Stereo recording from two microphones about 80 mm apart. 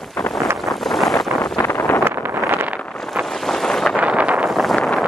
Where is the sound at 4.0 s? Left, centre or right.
Centre.